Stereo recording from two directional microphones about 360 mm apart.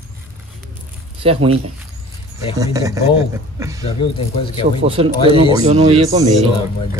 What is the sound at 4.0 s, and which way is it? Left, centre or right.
Speech, centre.